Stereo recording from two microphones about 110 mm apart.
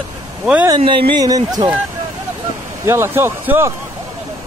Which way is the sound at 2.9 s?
25° right (ahead or behind).